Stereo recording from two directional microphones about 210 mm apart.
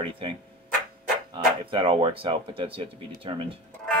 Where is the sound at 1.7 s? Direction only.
25° right (ahead or behind).